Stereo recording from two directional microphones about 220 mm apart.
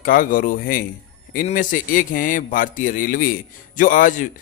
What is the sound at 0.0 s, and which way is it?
A man's voice, 40° left (ahead or behind).